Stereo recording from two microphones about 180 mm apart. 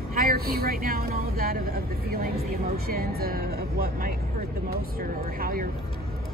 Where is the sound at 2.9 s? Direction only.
55° right (ahead or behind).